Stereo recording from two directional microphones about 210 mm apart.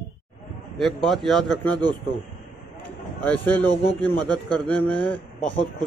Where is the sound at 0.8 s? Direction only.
Centre (ahead or behind).